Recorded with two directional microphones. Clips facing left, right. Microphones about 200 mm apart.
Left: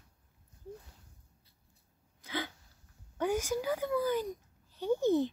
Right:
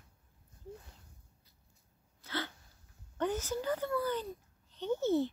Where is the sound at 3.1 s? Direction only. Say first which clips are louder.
Left 3 dB; 10° left (ahead or behind).